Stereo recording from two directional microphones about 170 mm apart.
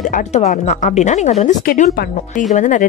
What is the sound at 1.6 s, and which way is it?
Speech, 60° left (ahead or behind).